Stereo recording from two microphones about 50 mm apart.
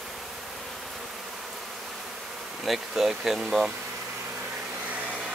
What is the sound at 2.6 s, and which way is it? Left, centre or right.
Speech, centre.